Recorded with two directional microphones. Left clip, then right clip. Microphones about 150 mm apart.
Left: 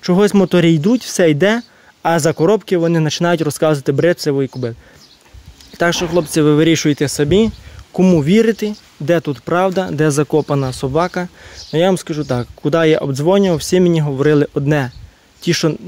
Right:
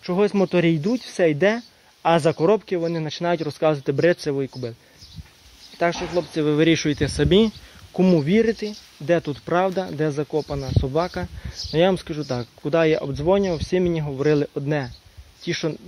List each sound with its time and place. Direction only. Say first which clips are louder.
0.0 s speech: left 7 dB; 40° left (ahead or behind)
5.8 s speech: left 7 dB; 50° left (ahead or behind)
6.4 s speech: left 5 dB; 30° left (ahead or behind)
7.2 s speech: left 3 dB; 10° left (ahead or behind)
7.9 s speech: left 6 dB; 20° left (ahead or behind)
9.1 s speech: left 5 dB; 20° left (ahead or behind)
9.8 s speech: left 9 dB; 45° left (ahead or behind)
10.9 s speech: left 6 dB; 30° left (ahead or behind)